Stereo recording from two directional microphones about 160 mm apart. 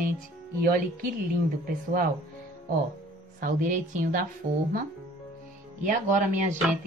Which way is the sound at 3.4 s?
55° right (ahead or behind).